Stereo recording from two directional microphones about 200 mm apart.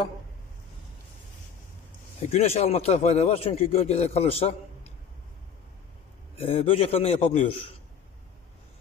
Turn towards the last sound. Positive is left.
turn(degrees=30)  # may be behind; listen again after turning